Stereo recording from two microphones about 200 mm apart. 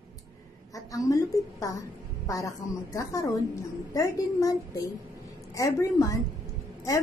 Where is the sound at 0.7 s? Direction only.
15° left (ahead or behind).